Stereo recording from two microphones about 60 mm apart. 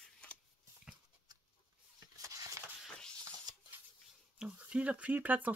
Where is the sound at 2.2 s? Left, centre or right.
Right.